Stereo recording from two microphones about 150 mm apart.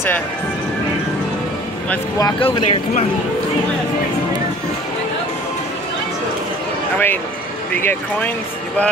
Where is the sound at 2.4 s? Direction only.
45° left (ahead or behind).